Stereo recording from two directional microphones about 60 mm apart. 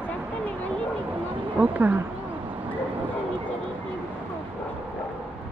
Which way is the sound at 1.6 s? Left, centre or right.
Right.